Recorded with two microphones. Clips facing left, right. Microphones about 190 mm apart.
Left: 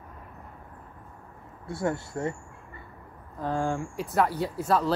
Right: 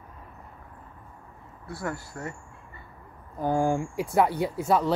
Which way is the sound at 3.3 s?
25° right (ahead or behind).